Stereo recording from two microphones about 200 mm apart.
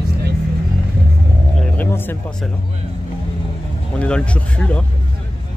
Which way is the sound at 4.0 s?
5° left (ahead or behind).